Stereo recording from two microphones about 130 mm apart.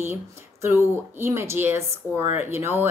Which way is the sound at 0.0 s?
20° right (ahead or behind).